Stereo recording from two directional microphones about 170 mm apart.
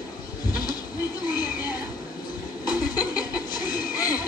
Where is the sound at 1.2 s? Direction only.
25° left (ahead or behind).